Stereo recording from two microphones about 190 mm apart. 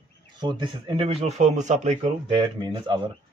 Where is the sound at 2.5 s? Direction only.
25° right (ahead or behind).